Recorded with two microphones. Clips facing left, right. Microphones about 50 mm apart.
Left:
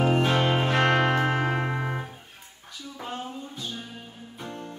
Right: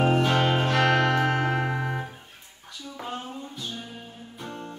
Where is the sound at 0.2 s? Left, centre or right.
Centre.